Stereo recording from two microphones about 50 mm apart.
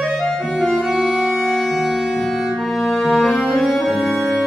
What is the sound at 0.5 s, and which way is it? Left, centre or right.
Organ, centre.